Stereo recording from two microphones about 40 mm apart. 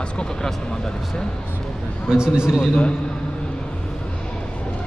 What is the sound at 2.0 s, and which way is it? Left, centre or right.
Speech, right.